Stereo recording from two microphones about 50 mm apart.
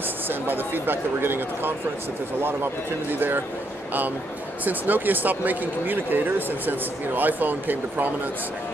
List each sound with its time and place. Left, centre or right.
0.3 s speech: right
4.6 s speech: right